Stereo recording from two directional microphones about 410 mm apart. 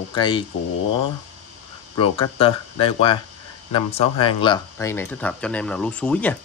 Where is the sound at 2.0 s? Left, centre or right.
Centre.